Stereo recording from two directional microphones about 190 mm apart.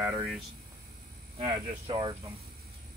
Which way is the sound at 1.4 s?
25° right (ahead or behind).